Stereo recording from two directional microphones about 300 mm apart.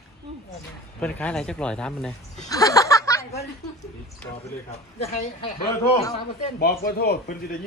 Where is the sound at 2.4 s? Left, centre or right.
Centre.